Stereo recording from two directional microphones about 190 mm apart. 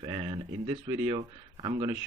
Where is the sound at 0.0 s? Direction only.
25° right (ahead or behind).